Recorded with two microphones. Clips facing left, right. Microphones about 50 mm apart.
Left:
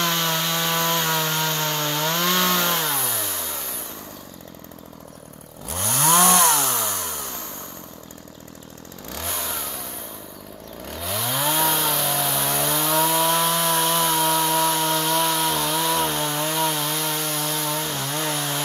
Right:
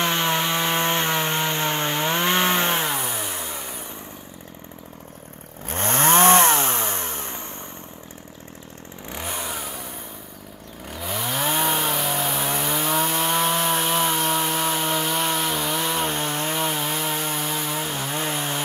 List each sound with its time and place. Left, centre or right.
0.0 s wood: centre
5.7 s chainsaw: right
9.1 s vehicle: centre
10.9 s chainsaw: centre